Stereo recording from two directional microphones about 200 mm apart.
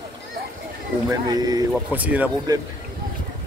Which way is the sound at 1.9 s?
10° right (ahead or behind).